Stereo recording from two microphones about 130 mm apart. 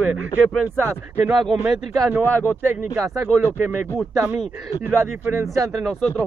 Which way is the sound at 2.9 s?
20° right (ahead or behind).